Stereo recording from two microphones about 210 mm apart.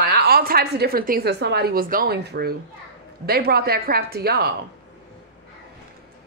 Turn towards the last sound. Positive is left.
turn(degrees=-50)  # may be behind; listen again after turning